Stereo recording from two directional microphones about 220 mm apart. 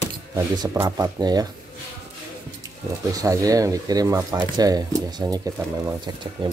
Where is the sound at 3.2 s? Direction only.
15° right (ahead or behind).